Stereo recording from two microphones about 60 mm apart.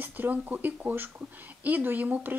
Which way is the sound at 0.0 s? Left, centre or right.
Right.